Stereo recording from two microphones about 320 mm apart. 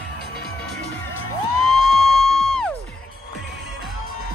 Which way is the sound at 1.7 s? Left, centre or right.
Left.